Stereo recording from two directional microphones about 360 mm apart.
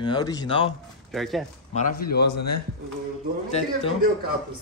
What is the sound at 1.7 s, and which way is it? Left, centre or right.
Speech, left.